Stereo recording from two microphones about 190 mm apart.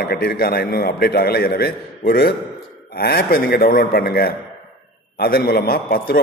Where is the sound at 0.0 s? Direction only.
55° left (ahead or behind).